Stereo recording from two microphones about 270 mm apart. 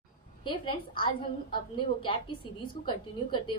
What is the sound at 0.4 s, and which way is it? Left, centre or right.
A woman's voice, centre.